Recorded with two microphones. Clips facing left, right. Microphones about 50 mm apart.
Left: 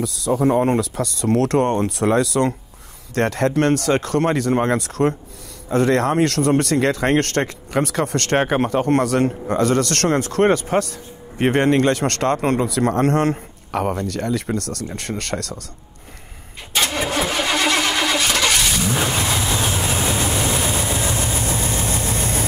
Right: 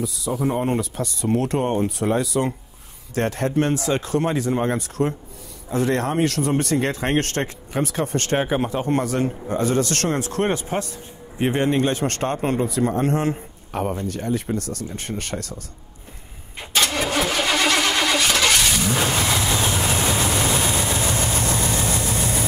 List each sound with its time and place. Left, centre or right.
0.0 s speech: left
3.2 s speech: left
16.7 s vehicle: centre
21.5 s vehicle: left